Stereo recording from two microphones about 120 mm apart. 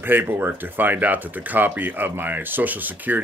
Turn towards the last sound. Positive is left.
turn(degrees=-15)  # may be behind; listen again after turning